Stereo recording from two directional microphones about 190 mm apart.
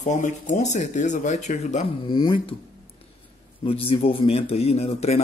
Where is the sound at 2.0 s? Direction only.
25° left (ahead or behind).